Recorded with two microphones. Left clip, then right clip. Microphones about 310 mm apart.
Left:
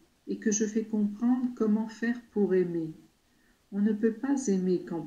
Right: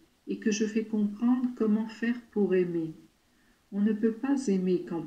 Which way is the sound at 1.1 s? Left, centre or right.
Centre.